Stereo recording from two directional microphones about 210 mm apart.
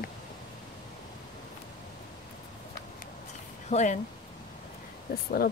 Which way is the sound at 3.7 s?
35° left (ahead or behind).